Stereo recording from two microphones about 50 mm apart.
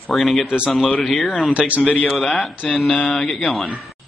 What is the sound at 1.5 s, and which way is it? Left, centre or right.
Speech, right.